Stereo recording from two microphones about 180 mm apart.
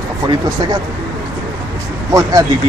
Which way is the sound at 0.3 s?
20° right (ahead or behind).